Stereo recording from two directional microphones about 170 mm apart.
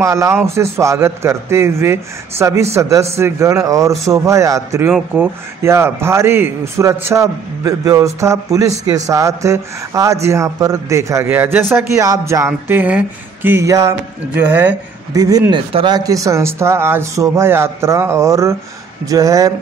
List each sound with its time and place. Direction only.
0.0 s speech: 15° right (ahead or behind)
15.1 s speech: 20° right (ahead or behind)